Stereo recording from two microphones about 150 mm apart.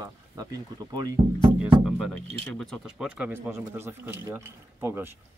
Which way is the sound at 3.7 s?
15° right (ahead or behind).